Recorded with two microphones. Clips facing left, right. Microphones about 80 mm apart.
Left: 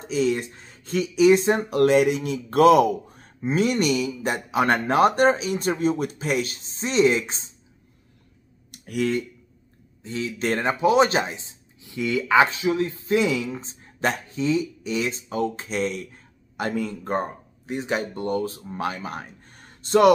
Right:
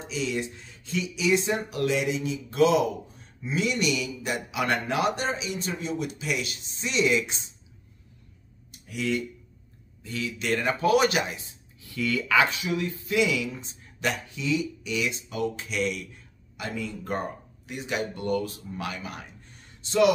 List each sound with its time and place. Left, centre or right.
0.0 s speech: left
8.7 s a sound: left
10.0 s speech: left
10.7 s speech: left
17.6 s speech: left